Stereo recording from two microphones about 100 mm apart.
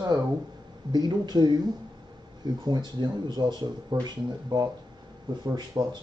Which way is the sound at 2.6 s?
45° right (ahead or behind).